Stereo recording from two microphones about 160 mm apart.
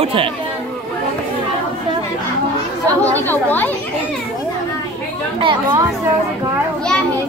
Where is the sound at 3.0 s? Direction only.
10° left (ahead or behind).